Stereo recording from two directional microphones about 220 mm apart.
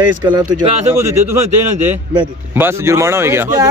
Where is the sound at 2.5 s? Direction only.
10° right (ahead or behind).